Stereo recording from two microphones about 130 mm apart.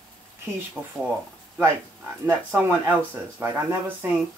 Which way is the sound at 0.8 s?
10° right (ahead or behind).